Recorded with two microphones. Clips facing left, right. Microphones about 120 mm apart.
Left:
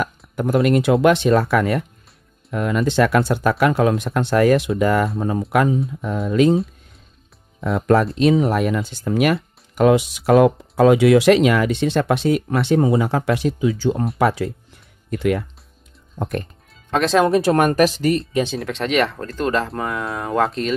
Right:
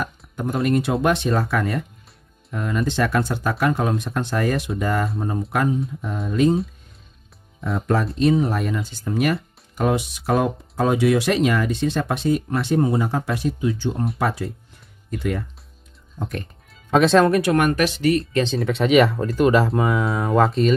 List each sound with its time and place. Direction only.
0.0 s speech: 90° left
5.9 s speech: 75° left (ahead or behind)
7.6 s speech: 70° left (ahead or behind); by 14.5 s 90° left
15.0 s speech: 75° left (ahead or behind)
16.2 s speech: 50° left (ahead or behind)
16.9 s speech: centre (ahead or behind)
17.3 s speech: 35° left (ahead or behind)
18.3 s speech: 10° left (ahead or behind)
18.6 s speech: centre (ahead or behind)